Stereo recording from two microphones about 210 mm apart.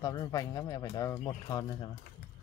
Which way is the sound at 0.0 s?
15° left (ahead or behind).